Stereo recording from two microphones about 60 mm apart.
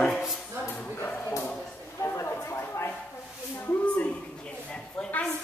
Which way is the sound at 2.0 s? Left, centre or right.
Left.